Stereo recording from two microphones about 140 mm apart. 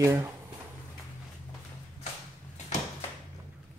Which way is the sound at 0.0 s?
15° right (ahead or behind).